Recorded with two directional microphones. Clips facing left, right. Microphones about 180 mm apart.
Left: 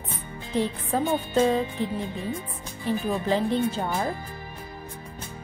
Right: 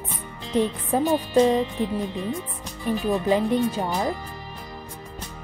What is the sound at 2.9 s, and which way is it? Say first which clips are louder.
Speech: right 3 dB; 15° right (ahead or behind).